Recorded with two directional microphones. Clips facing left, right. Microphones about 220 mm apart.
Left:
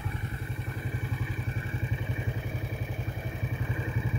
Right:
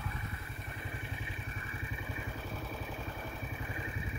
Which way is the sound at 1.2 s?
40° left (ahead or behind).